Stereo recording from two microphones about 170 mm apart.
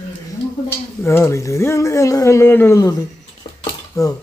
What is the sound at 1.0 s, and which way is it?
Speech, 15° left (ahead or behind).